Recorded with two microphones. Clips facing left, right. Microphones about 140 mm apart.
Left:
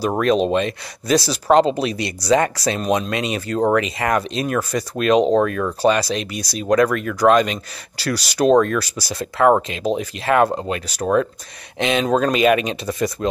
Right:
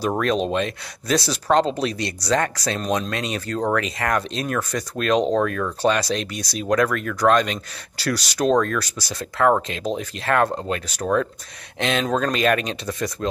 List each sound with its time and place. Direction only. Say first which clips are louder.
0.2 s speech: left 8 dB; 5° left (ahead or behind)